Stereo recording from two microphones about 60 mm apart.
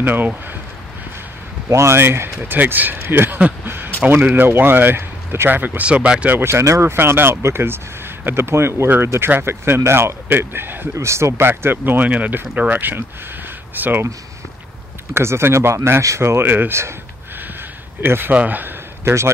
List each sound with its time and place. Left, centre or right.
0.0 s speech: right
1.7 s speech: right
6.3 s speech: right
11.0 s speech: right
15.1 s speech: right
18.0 s speech: right
18.3 s speech: right
19.0 s speech: right